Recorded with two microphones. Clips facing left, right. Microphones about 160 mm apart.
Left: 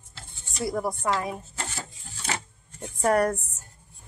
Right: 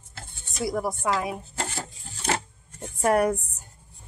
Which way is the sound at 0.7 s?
5° right (ahead or behind).